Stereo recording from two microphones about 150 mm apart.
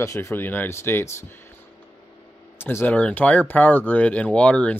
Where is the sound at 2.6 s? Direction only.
15° left (ahead or behind).